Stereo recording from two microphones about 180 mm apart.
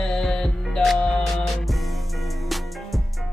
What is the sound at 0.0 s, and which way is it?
Music, 5° left (ahead or behind).